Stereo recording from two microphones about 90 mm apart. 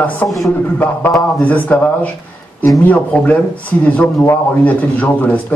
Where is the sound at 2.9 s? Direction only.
15° left (ahead or behind).